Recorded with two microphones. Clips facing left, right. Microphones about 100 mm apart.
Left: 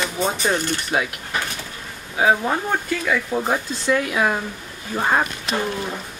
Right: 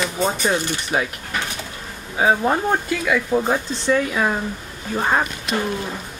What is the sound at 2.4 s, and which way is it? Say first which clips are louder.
Speech: right 3 dB; 15° right (ahead or behind).